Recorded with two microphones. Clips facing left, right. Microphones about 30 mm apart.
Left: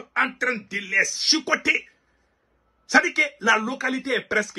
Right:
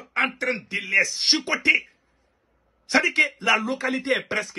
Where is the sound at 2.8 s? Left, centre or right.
Right.